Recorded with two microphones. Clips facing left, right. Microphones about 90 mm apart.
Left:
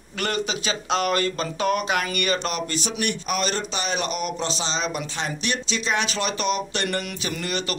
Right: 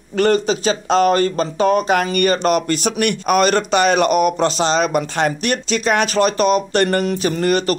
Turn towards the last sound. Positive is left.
turn(degrees=-45)  # may be behind; listen again after turning